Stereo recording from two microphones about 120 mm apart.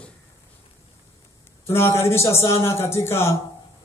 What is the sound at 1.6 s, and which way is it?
A man's voice, 20° left (ahead or behind).